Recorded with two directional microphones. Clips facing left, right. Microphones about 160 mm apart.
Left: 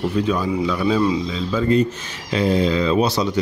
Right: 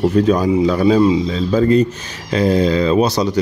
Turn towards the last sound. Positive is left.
turn(degrees=-40)  # may be behind; listen again after turning